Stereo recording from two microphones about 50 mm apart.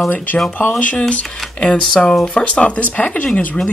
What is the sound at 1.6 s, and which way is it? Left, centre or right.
Speech, centre.